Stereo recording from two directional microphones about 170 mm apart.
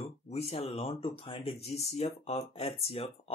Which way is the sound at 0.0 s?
35° left (ahead or behind).